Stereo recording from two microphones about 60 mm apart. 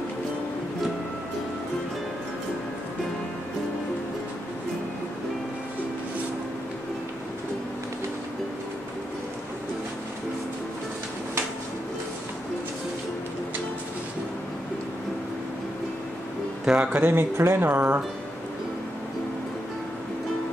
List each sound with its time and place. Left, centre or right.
16.6 s speech: centre
16.9 s speech: right